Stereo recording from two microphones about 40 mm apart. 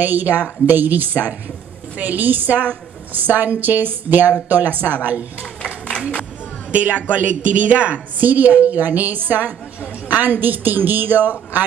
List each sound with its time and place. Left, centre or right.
0.0 s a woman's voice: right
5.6 s a sound: left
6.7 s a woman's voice: right